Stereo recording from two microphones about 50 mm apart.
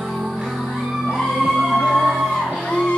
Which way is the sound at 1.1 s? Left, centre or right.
Centre.